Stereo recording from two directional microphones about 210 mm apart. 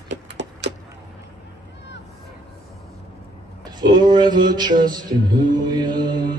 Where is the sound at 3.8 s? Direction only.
20° right (ahead or behind).